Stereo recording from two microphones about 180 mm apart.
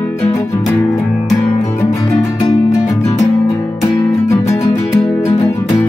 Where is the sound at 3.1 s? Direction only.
10° left (ahead or behind).